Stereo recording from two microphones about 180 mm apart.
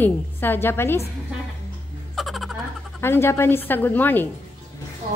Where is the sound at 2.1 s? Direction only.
Centre (ahead or behind).